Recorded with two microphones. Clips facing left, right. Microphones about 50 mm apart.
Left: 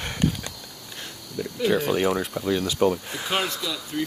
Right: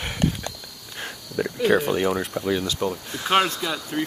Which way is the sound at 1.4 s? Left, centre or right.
Right.